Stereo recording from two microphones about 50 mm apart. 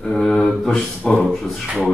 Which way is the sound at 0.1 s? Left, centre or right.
Centre.